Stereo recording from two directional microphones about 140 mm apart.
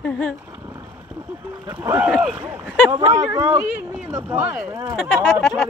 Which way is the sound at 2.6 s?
10° left (ahead or behind).